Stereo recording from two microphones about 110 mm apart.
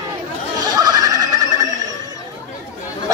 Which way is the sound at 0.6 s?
35° right (ahead or behind).